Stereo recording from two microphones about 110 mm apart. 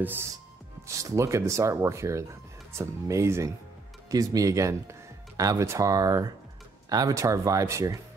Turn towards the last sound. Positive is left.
turn(degrees=-30)  # may be behind; listen again after turning